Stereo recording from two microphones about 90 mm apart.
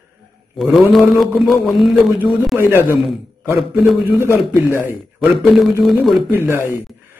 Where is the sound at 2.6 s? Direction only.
25° right (ahead or behind).